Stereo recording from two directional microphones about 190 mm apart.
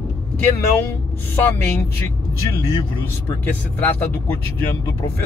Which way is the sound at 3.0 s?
10° left (ahead or behind).